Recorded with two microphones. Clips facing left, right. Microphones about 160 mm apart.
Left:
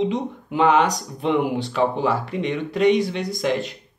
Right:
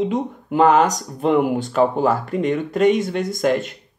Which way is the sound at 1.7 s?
45° right (ahead or behind).